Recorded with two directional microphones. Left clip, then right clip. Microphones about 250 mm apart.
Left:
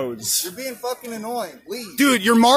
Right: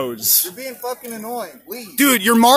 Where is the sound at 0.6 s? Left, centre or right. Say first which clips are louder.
Even; centre.